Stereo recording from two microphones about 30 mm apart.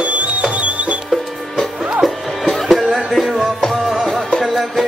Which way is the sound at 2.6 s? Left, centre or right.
Centre.